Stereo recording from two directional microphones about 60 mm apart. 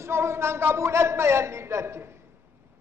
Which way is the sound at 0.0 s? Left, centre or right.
Right.